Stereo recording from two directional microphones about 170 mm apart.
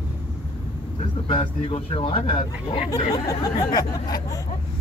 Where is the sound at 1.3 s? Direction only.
30° left (ahead or behind).